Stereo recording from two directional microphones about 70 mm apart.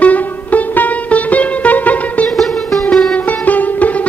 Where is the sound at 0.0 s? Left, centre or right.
Left.